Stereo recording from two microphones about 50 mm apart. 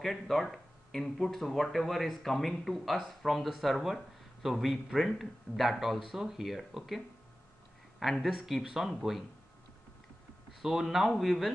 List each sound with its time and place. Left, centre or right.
0.0 s speech: centre
8.0 s speech: centre
10.6 s speech: centre